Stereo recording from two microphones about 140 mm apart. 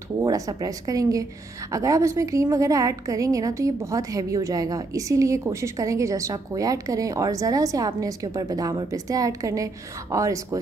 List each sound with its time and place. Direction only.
0.2 s a woman's voice: 25° right (ahead or behind)